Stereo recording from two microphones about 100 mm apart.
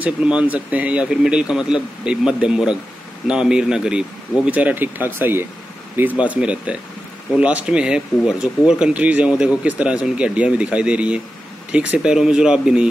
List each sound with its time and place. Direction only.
0.0 s speech: 10° right (ahead or behind)